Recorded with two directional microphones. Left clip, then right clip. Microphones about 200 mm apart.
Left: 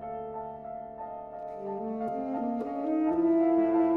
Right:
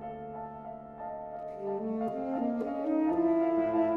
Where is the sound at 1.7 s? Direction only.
10° right (ahead or behind).